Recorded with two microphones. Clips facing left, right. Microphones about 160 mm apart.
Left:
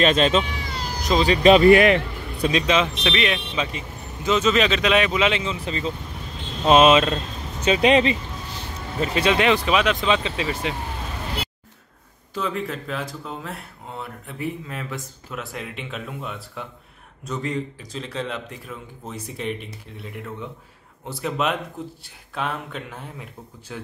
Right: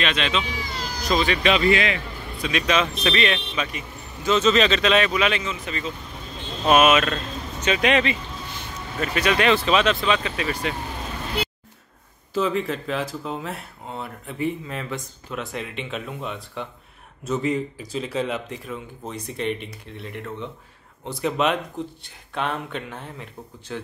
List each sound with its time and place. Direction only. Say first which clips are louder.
0.0 s speech: left 6 dB; 40° left (ahead or behind)
2.5 s speech: left 1 dB; 20° left (ahead or behind)
3.1 s speech: right 1 dB; 10° left (ahead or behind)
3.5 s speech: left 2 dB; 20° left (ahead or behind)
12.4 s speech: right 4 dB; centre (ahead or behind)